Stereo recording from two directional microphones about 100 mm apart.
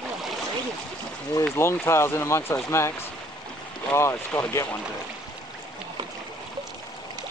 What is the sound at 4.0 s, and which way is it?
Speech, 25° left (ahead or behind).